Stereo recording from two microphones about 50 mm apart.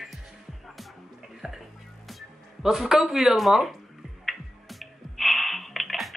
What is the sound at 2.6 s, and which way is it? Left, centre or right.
A woman's voice, centre.